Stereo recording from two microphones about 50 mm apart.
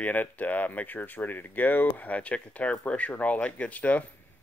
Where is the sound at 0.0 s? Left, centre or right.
Left.